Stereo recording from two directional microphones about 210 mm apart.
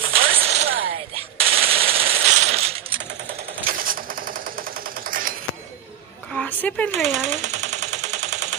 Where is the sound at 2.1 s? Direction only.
85° right.